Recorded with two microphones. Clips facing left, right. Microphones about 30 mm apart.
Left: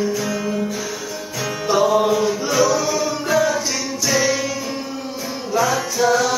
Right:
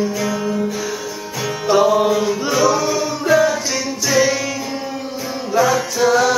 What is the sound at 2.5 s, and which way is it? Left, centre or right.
Music, right.